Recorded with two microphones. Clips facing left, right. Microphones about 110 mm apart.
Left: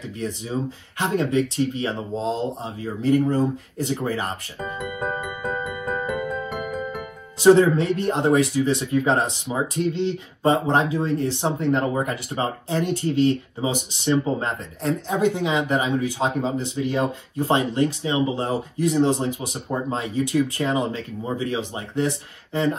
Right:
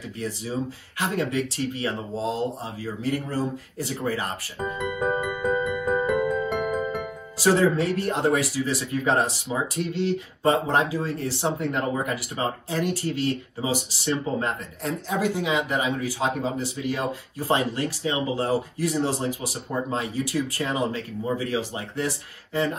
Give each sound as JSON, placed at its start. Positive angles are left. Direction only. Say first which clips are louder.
{"t": 0.2, "sound": "speech", "louder": "left 2 dB", "side_deg": 25}
{"t": 7.3, "sound": "speech", "louder": "left 6 dB", "side_deg": 25}